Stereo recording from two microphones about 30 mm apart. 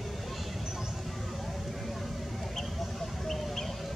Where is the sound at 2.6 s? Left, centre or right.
Centre.